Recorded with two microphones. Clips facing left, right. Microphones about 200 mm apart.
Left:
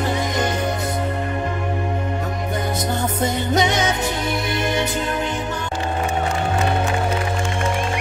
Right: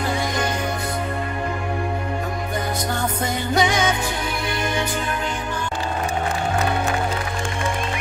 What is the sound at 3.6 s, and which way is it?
Music, 20° left (ahead or behind).